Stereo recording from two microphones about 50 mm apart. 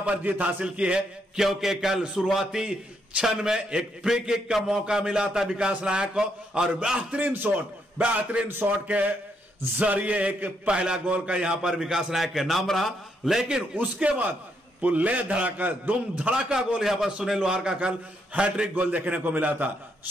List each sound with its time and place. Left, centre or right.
0.0 s a man's voice: right; by 2.6 s centre
2.6 s a man's voice: right
7.2 s a man's voice: right
8.5 s a man's voice: right
8.8 s a man's voice: right; by 13.5 s centre
13.7 s a man's voice: right
16.5 s a man's voice: centre
17.7 s a man's voice: right